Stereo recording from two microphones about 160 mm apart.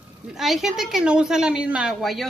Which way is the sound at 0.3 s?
Centre (ahead or behind).